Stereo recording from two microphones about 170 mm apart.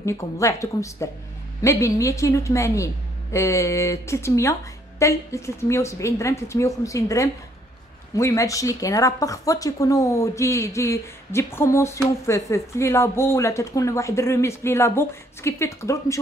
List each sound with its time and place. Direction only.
0.0 s a woman's voice: 15° left (ahead or behind)